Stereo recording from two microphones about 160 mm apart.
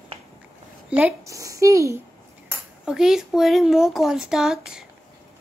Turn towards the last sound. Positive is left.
turn(degrees=-5)  # may be behind; listen again after turning